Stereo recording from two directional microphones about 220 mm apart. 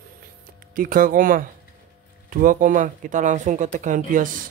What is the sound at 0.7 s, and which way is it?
Speech, 40° right (ahead or behind).